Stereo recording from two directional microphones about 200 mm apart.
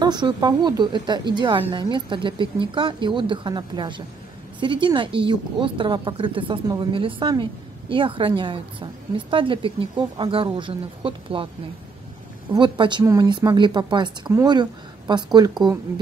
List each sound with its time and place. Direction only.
0.0 s speech: 20° right (ahead or behind)
12.5 s speech: 25° right (ahead or behind)